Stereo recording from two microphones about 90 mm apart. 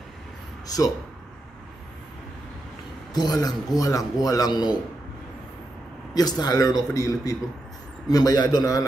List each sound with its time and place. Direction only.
0.7 s a man's voice: 45° left (ahead or behind)
3.1 s a man's voice: 50° left (ahead or behind)
6.1 s a man's voice: 50° left (ahead or behind)